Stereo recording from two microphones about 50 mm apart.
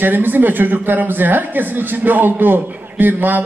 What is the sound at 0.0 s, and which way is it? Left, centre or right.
A woman's voice, right.